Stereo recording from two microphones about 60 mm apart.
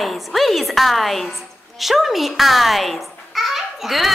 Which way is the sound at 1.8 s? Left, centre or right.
Centre.